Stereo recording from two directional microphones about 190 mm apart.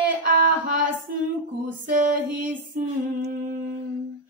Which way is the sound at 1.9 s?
45° right (ahead or behind).